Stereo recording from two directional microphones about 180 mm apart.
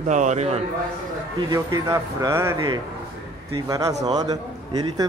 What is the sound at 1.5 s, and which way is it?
A man's voice, 20° right (ahead or behind).